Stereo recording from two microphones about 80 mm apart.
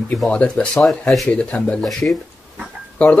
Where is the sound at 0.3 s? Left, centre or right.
Centre.